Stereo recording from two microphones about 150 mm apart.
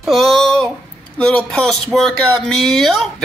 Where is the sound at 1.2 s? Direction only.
5° left (ahead or behind).